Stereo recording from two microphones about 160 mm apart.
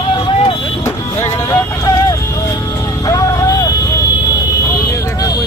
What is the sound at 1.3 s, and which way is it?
Vehicle, 20° left (ahead or behind).